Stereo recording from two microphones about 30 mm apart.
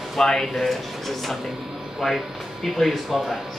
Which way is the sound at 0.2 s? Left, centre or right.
Left.